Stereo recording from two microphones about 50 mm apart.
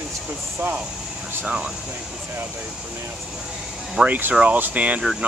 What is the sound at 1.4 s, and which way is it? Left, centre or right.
Speech, centre.